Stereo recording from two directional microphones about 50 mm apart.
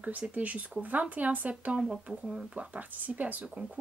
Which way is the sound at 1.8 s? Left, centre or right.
Centre.